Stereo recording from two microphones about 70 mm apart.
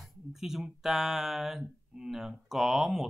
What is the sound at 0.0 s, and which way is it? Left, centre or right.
Speech, centre.